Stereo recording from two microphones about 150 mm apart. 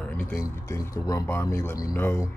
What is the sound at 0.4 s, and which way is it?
Speech, 20° left (ahead or behind).